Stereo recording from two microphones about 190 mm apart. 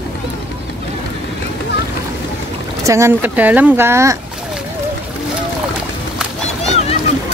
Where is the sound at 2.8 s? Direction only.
15° right (ahead or behind).